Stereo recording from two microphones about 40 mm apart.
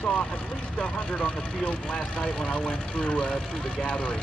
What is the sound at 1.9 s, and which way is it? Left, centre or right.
Speech, left.